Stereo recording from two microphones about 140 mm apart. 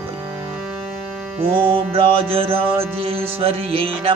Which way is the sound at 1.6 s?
40° right (ahead or behind).